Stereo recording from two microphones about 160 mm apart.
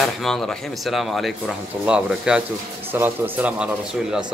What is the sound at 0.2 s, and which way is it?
A man's voice, centre (ahead or behind).